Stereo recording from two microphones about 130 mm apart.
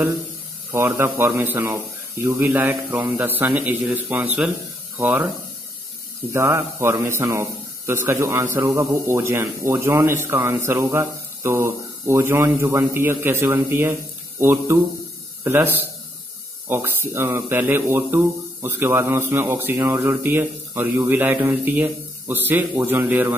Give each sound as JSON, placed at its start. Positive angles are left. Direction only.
{"t": 0.7, "sound": "speech", "side_deg": -20}
{"t": 6.3, "sound": "speech", "side_deg": -20}